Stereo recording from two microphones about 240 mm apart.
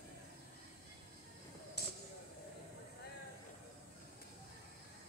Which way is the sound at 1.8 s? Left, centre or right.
Left.